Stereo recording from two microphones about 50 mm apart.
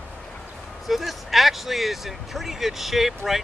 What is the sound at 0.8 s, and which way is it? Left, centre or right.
Speech, centre.